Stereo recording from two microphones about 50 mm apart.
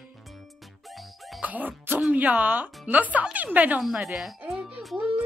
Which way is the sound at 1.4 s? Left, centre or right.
Right.